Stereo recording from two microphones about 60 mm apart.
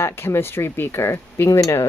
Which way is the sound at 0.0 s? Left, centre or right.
Left.